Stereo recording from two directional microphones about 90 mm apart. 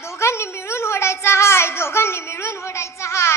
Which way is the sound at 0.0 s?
30° left (ahead or behind).